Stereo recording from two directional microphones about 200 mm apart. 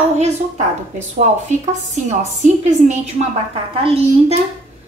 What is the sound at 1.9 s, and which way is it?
A woman's voice, 35° right (ahead or behind).